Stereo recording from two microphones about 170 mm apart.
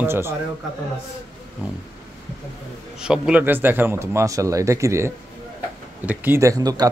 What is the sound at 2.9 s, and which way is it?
A man's voice, 5° right (ahead or behind).